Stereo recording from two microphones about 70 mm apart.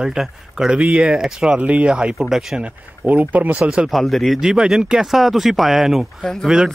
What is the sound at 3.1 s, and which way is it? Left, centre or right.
Speech, right.